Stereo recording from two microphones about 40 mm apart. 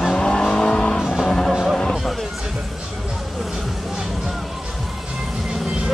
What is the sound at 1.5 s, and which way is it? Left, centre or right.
Music, centre.